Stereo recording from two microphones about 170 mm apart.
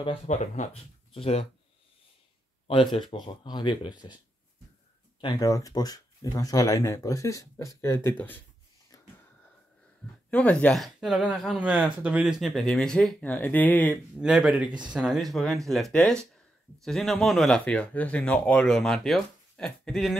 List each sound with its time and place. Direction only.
0.0 s speech: 40° left (ahead or behind)
2.7 s speech: 30° left (ahead or behind)
5.2 s speech: 25° left (ahead or behind)
8.9 s wheeze: 20° left (ahead or behind)
10.3 s speech: 10° left (ahead or behind)
14.1 s speech: 5° right (ahead or behind)